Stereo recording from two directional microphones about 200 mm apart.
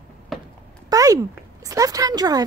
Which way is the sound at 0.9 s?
15° right (ahead or behind).